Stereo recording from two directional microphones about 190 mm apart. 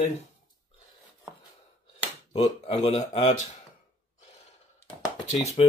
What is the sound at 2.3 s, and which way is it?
Speech, 35° left (ahead or behind).